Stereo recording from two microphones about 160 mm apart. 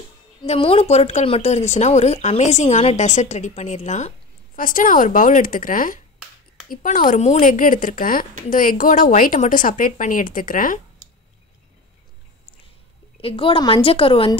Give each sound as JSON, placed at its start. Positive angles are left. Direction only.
{"t": 0.5, "sound": "speech", "side_deg": 35}
{"t": 4.6, "sound": "a woman's voice", "side_deg": 60}
{"t": 13.2, "sound": "a woman's voice", "side_deg": 35}